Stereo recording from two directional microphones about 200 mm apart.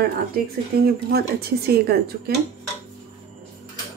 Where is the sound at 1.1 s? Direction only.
50° right (ahead or behind).